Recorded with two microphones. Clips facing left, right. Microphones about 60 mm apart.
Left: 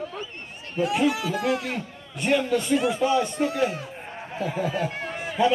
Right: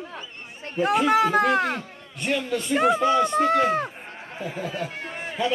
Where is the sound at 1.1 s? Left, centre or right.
Right.